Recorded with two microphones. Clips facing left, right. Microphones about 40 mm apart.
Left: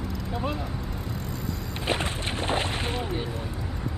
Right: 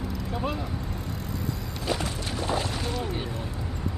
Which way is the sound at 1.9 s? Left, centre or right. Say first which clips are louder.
Left 2 dB; left.